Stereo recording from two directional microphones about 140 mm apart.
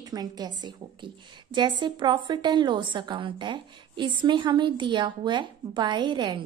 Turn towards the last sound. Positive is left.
turn(degrees=-35)  # may be behind; listen again after turning